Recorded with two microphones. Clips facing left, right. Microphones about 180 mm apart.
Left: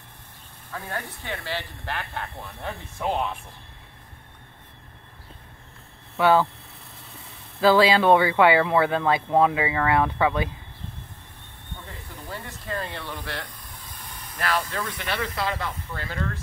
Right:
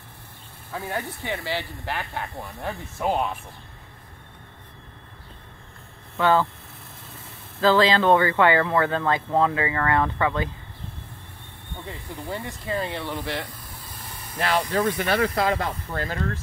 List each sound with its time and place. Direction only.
0.7 s speech: 10° right (ahead or behind)
6.1 s speech: 10° left (ahead or behind)
7.6 s speech: 10° left (ahead or behind)
11.7 s speech: 10° right (ahead or behind)
14.4 s speech: 25° right (ahead or behind); by 16.2 s 45° right (ahead or behind)